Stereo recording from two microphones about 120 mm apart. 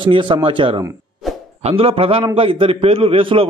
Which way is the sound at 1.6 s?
55° right (ahead or behind).